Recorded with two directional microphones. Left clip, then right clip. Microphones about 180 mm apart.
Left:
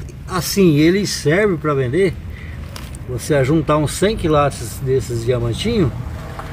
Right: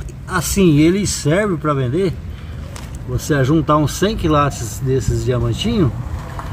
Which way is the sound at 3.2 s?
30° right (ahead or behind).